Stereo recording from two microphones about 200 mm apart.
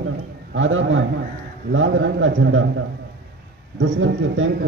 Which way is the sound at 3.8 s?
75° right (ahead or behind).